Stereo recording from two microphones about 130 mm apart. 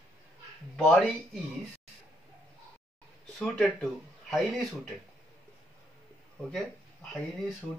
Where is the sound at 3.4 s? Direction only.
5° left (ahead or behind).